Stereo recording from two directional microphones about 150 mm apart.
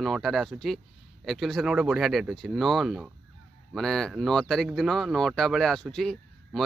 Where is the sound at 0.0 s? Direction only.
Centre (ahead or behind).